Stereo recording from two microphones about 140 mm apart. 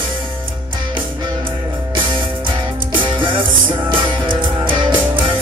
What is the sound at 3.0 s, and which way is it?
Music, 35° right (ahead or behind).